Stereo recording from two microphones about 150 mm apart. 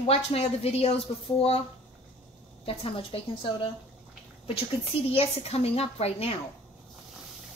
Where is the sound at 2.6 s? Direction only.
40° left (ahead or behind).